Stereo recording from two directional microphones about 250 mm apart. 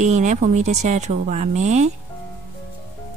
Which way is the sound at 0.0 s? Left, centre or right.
Right.